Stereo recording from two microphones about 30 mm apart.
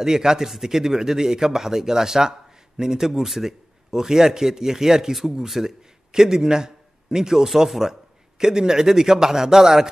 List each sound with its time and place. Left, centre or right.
0.0 s a man's voice: centre
5.5 s a man's voice: centre
6.1 s a man's voice: centre
7.4 s a man's voice: centre